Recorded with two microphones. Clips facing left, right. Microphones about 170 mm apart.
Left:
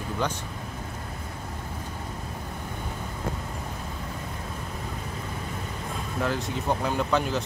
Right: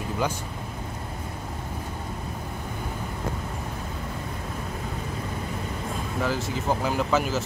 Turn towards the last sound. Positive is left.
turn(degrees=-5)  # may be behind; listen again after turning